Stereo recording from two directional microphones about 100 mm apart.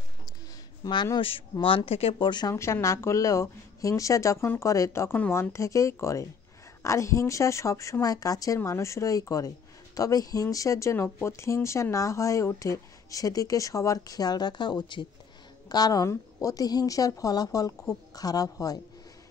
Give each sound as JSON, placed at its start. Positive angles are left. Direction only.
{"t": 0.8, "sound": "speech", "side_deg": 35}
{"t": 1.6, "sound": "speech", "side_deg": 60}
{"t": 2.1, "sound": "speech", "side_deg": 50}
{"t": 2.5, "sound": "a woman's voice", "side_deg": 25}
{"t": 15.7, "sound": "speech", "side_deg": 40}